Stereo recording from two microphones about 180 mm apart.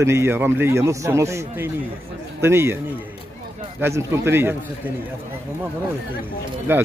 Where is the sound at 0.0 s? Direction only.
15° right (ahead or behind).